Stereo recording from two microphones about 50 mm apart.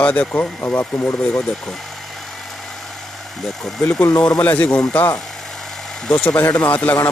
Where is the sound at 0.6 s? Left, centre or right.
Left.